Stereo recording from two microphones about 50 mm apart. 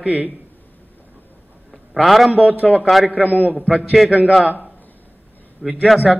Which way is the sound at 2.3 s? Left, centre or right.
Right.